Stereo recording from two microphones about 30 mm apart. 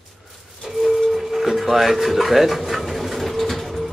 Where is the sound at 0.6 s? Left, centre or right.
Centre.